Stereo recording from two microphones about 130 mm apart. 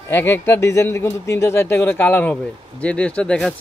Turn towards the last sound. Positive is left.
turn(degrees=10)  # may be behind; listen again after turning